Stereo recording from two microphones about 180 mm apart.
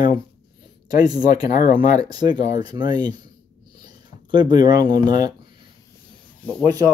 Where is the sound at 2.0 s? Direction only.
20° right (ahead or behind).